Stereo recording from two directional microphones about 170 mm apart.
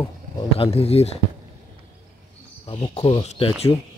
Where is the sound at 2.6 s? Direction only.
35° left (ahead or behind).